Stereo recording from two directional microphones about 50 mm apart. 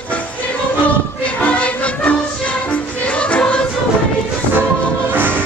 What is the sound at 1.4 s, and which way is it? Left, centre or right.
Music, left.